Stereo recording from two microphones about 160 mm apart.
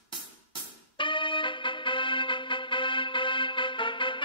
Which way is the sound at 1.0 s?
30° left (ahead or behind).